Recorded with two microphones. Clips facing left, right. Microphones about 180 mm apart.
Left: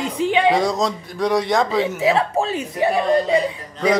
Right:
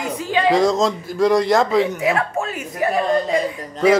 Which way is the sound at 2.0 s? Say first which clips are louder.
Left 2 dB; 25° left (ahead or behind).